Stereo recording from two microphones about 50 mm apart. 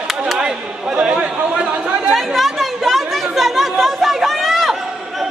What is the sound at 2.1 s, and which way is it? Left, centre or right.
Chatter, centre.